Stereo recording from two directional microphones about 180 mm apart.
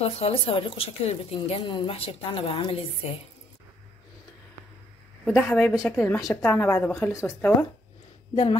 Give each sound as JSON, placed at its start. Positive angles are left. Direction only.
{"t": 0.0, "sound": "a woman's voice", "side_deg": 35}
{"t": 5.2, "sound": "speech", "side_deg": 5}